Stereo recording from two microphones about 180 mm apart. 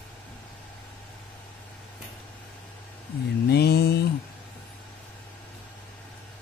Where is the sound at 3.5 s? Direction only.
65° left (ahead or behind).